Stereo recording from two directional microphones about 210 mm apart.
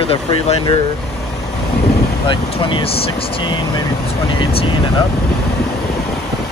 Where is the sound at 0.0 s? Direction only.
25° left (ahead or behind).